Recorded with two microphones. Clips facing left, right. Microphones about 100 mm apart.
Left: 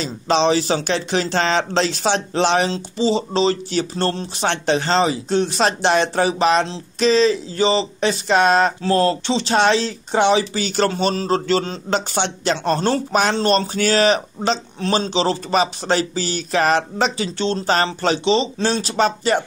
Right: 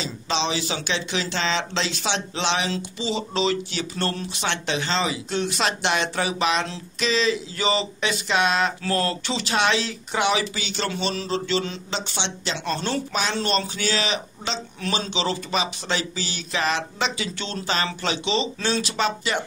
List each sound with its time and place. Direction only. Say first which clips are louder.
0.0 s speech: left 8 dB; 45° left (ahead or behind)
11.9 s speech: left 13 dB; 50° left (ahead or behind)
14.8 s speech: left 5 dB; 35° left (ahead or behind)